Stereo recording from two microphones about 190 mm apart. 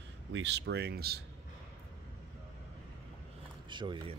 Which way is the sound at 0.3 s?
70° right (ahead or behind).